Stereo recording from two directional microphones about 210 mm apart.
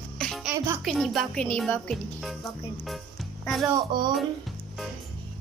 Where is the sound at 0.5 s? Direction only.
10° right (ahead or behind).